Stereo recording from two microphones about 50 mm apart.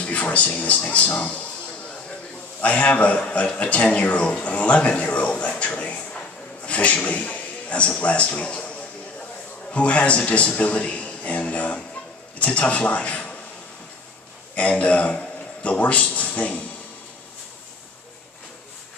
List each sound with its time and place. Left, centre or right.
0.0 s speech: left
2.6 s a man's voice: left
5.6 s a sound: left
8.0 s a man's voice: left
14.5 s a man's voice: left